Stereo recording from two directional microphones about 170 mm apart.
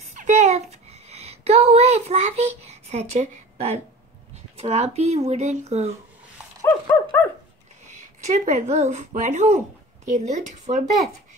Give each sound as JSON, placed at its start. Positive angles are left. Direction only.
{"t": 0.1, "sound": "a sound", "side_deg": -45}
{"t": 4.6, "sound": "speech", "side_deg": -40}
{"t": 7.1, "sound": "dog", "side_deg": 10}
{"t": 7.9, "sound": "speech", "side_deg": -45}